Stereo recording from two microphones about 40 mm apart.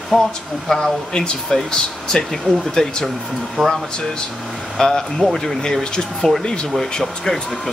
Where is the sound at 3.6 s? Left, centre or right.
Centre.